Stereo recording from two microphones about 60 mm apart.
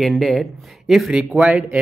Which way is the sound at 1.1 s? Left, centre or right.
Centre.